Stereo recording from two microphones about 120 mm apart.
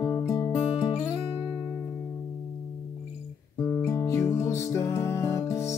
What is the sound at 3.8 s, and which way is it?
Music, 30° left (ahead or behind).